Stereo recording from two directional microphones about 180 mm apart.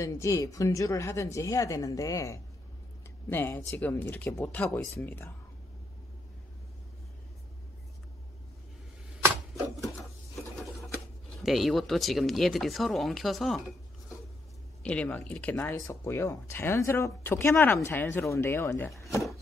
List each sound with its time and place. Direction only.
0.0 s speech: 15° left (ahead or behind)
11.4 s speech: centre (ahead or behind)
14.8 s speech: 5° left (ahead or behind)